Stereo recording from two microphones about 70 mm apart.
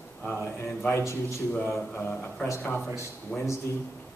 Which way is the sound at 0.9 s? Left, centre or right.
Left.